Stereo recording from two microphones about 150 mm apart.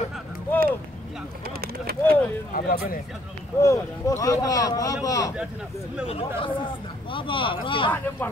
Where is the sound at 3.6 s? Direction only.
20° left (ahead or behind).